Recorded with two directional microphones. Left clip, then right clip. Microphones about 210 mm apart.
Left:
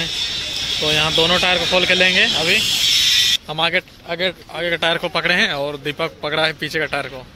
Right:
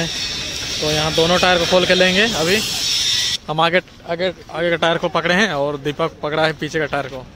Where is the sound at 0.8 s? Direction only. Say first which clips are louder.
Even; 5° right (ahead or behind).